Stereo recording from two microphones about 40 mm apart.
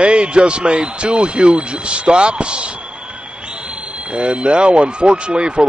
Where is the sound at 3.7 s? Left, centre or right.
Right.